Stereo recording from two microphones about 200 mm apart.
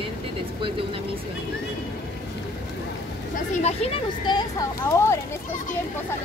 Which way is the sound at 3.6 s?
30° left (ahead or behind).